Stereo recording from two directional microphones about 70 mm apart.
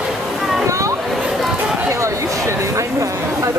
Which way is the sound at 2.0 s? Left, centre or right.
Right.